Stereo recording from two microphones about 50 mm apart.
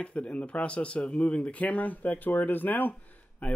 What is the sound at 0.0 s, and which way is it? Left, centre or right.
Speech, left.